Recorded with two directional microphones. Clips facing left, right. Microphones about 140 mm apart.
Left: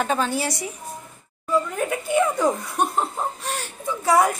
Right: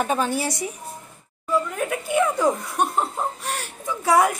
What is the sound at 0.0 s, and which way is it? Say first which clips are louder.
Speech: even; 10° right (ahead or behind).